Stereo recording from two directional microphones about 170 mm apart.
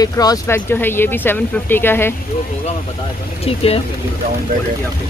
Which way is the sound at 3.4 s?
35° left (ahead or behind).